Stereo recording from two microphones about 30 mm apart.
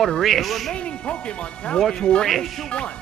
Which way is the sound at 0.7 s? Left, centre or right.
Left.